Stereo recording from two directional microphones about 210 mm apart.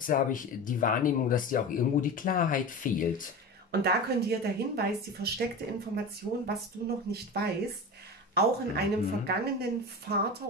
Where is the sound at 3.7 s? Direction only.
50° right (ahead or behind).